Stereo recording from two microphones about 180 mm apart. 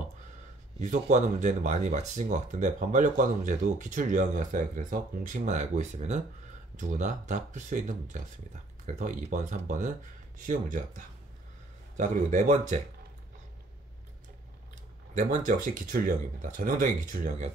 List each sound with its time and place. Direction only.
0.7 s speech: 40° right (ahead or behind)
12.0 s speech: 45° right (ahead or behind)
15.1 s speech: 45° right (ahead or behind)